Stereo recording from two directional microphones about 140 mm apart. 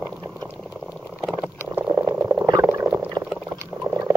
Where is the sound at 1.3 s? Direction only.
10° right (ahead or behind).